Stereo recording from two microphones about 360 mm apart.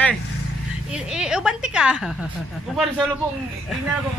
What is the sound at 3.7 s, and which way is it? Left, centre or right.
Speech, centre.